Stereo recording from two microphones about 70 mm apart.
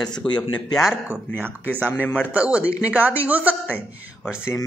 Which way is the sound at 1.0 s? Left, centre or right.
Right.